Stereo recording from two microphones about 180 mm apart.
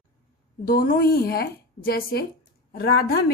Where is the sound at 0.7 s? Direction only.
50° left (ahead or behind).